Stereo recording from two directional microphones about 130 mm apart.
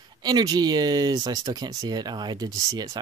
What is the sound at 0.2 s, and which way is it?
Speech, 30° right (ahead or behind).